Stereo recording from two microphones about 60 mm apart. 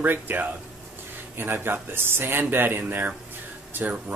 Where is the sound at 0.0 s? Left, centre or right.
Right.